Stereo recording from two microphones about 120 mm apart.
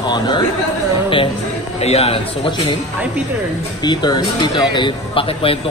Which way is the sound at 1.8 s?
60° left (ahead or behind).